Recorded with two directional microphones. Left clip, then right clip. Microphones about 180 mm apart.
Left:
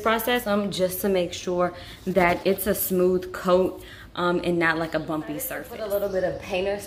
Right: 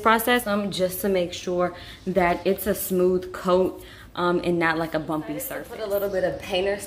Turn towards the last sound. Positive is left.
turn(degrees=-35)  # may be behind; listen again after turning